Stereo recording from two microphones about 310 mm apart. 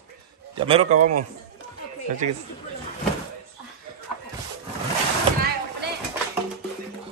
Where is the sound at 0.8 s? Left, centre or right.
Right.